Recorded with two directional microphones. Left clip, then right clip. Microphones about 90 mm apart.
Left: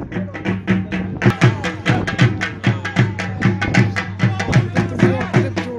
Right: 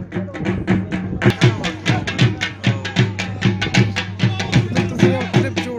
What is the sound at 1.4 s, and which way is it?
Music, 40° right (ahead or behind).